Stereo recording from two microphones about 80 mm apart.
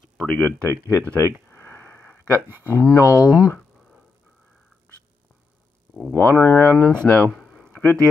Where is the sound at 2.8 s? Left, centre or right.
Left.